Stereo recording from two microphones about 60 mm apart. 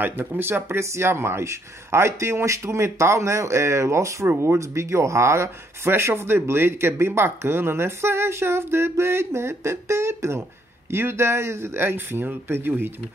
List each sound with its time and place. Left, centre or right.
0.0 s speech: right